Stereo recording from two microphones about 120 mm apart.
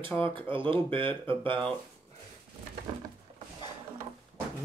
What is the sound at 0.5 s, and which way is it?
Speech, 45° right (ahead or behind).